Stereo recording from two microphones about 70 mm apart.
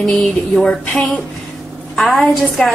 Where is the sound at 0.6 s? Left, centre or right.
Centre.